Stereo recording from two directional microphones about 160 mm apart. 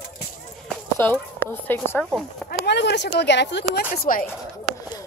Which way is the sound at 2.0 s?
Centre (ahead or behind).